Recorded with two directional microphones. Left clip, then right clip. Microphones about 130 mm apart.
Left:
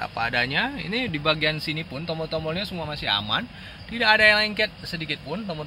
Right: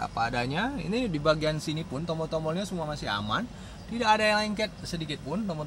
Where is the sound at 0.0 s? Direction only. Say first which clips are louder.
Left 4 dB; 10° left (ahead or behind).